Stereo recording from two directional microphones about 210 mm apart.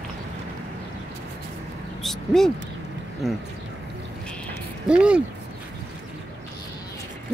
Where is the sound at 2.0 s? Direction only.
Centre (ahead or behind).